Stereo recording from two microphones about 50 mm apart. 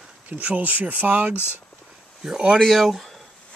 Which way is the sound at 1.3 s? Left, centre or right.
Left.